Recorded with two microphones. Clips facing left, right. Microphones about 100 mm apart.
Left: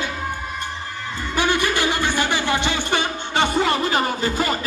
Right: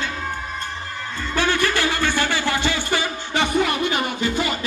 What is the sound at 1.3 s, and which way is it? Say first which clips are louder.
Music: even; 15° left (ahead or behind).